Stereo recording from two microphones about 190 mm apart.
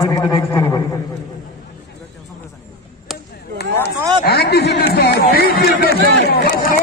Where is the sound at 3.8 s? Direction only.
60° left (ahead or behind).